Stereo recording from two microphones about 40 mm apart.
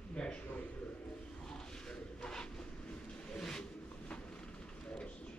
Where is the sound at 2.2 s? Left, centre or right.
Centre.